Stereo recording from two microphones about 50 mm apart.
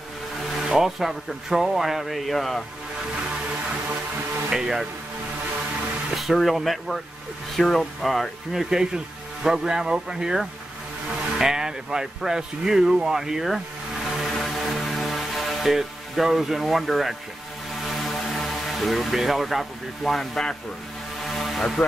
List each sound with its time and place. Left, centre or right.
0.7 s speech: centre
4.5 s speech: centre
6.1 s speech: centre
8.5 s speech: centre
14.2 s music: centre
17.9 s speech: centre
21.2 s vehicle: centre